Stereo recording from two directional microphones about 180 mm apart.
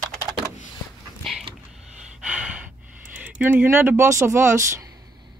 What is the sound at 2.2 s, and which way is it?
Gasp, 5° right (ahead or behind).